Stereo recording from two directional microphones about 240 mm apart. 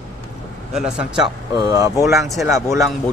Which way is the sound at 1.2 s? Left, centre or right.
Centre.